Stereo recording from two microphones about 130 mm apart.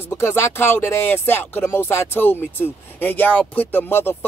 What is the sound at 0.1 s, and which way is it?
Speech, 20° left (ahead or behind).